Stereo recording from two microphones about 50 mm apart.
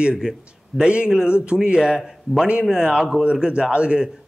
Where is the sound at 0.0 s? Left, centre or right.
Centre.